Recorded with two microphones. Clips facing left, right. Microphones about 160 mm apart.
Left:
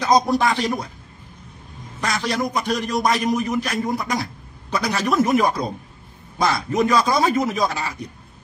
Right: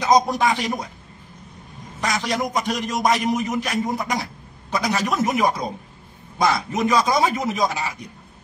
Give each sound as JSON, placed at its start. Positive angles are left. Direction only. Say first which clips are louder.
{"t": 0.0, "sound": "a man's voice", "louder": "even", "side_deg": -15}
{"t": 2.0, "sound": "a man's voice", "louder": "even", "side_deg": -15}